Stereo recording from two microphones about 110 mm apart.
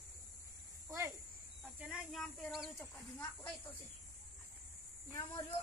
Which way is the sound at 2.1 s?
Centre (ahead or behind).